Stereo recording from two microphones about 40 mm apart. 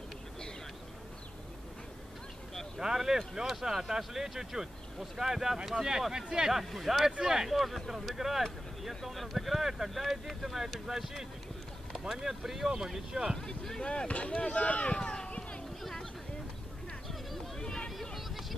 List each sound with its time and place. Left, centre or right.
2.8 s speech: centre
6.6 s speech: centre
7.1 s speech: centre
13.4 s speech: centre; by 15.0 s left
15.0 s run: centre
15.2 s a sound: left
15.8 s a sound: centre
17.6 s a sound: centre
18.1 s vehicle: centre